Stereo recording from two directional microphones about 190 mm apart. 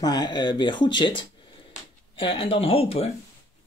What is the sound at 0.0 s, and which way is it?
Speech, 20° left (ahead or behind).